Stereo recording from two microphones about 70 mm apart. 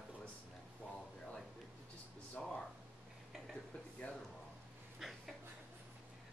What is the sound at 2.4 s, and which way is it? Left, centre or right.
Speech, centre.